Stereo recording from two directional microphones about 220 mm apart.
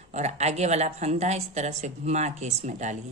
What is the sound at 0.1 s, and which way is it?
Speech, 30° right (ahead or behind).